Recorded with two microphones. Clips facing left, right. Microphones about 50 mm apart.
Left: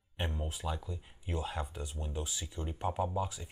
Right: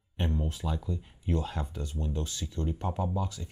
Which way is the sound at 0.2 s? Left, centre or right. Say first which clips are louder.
Right 5 dB; centre.